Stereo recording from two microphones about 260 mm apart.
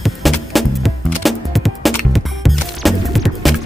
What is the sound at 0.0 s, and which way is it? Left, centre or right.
Music, centre.